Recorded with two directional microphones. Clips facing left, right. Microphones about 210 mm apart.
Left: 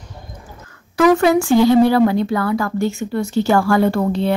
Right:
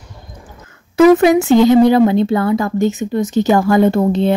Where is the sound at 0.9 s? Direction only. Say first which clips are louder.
Right 4 dB; 20° right (ahead or behind).